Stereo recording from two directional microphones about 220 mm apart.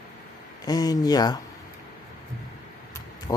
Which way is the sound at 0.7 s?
15° left (ahead or behind).